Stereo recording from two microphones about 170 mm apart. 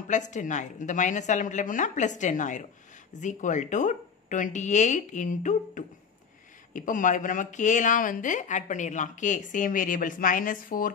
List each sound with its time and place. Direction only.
0.1 s speech: 45° left (ahead or behind)